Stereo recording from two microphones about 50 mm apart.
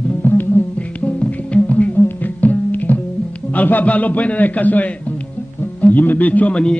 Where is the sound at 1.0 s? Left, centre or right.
Left.